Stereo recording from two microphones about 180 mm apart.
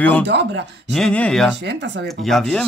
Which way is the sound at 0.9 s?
5° left (ahead or behind).